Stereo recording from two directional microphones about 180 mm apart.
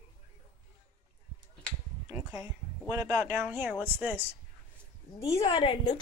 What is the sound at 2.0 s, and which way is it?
Speech, 20° right (ahead or behind).